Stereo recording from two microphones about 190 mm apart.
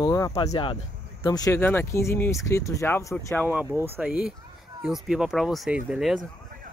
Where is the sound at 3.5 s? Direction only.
10° right (ahead or behind).